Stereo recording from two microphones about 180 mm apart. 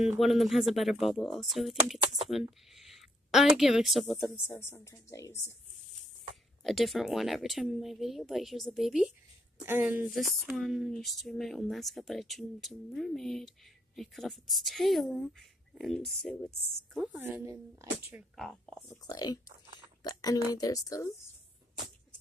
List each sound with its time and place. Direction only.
0.0 s speech: centre (ahead or behind)
4.5 s speech: 10° left (ahead or behind)
6.6 s a woman's voice: centre (ahead or behind)
17.2 s speech: 10° right (ahead or behind)
18.3 s speech: 5° left (ahead or behind)
18.9 s speech: 20° left (ahead or behind)